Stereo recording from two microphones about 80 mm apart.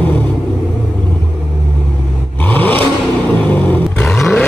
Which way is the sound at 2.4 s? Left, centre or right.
Left.